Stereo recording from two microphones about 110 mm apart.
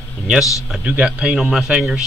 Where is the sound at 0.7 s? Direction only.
10° right (ahead or behind).